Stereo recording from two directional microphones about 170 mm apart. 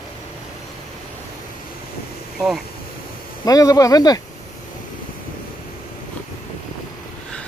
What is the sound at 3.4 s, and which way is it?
Speech, 20° left (ahead or behind).